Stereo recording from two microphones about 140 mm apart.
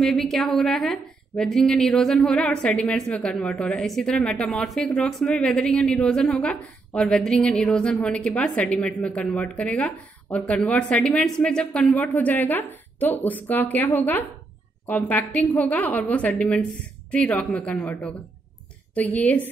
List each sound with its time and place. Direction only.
0.0 s a woman's voice: centre (ahead or behind)
18.9 s a woman's voice: 10° left (ahead or behind)